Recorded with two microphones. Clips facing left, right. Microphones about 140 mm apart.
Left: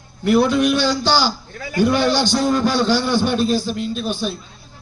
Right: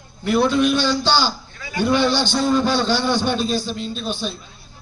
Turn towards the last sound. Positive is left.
turn(degrees=10)  # may be behind; listen again after turning